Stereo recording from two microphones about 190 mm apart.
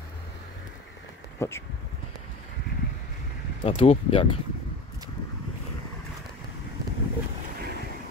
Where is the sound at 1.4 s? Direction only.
15° left (ahead or behind).